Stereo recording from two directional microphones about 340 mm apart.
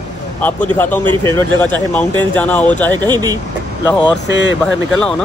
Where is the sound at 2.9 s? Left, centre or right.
Centre.